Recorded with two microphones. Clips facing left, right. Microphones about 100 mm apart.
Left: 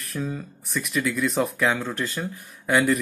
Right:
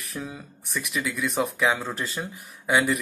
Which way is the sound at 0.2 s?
10° right (ahead or behind).